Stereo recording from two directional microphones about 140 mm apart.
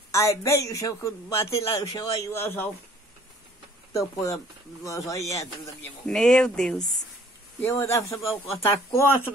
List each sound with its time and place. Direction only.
0.1 s a man's voice: 20° left (ahead or behind)
3.9 s a man's voice: 25° left (ahead or behind)
6.0 s speech: 5° left (ahead or behind)
7.6 s a man's voice: 20° left (ahead or behind)